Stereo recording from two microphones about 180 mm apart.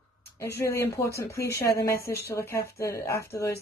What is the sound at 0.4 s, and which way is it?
Speech, 15° left (ahead or behind).